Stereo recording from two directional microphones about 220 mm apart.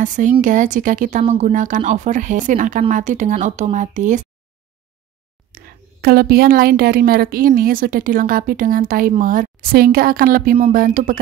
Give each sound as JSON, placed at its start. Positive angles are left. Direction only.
{"t": 0.0, "sound": "a woman's voice", "side_deg": -35}
{"t": 5.5, "sound": "a woman's voice", "side_deg": -45}